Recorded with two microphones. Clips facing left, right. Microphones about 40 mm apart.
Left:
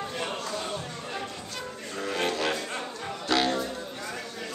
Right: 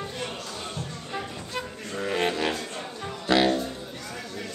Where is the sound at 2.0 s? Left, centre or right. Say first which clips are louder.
Right 2 dB; right.